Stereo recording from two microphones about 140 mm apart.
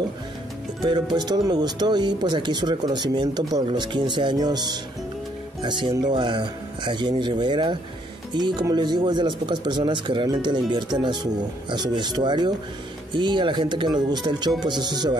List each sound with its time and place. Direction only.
0.8 s speech: 30° right (ahead or behind)